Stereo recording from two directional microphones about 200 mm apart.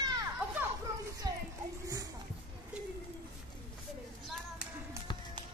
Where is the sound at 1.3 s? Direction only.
20° right (ahead or behind).